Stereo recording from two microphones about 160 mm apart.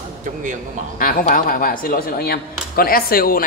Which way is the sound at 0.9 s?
60° left (ahead or behind).